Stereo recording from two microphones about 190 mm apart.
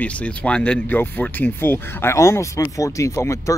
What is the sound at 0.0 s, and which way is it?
Speech, 5° left (ahead or behind).